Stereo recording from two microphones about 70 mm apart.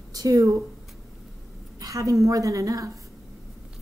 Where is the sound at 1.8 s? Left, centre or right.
Right.